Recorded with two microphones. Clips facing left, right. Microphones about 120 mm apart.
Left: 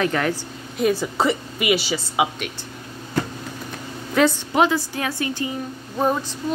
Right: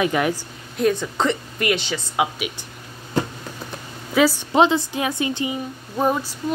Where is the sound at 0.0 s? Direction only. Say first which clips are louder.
Right 1 dB; 15° right (ahead or behind).